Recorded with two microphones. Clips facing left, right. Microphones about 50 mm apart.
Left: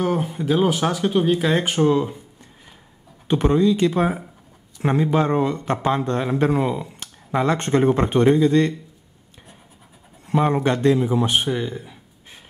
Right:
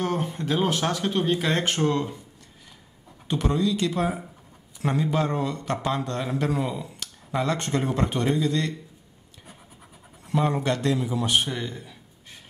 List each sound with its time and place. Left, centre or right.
0.0 s speech: centre
3.3 s a man's voice: left
10.2 s speech: left
11.4 s a sound: centre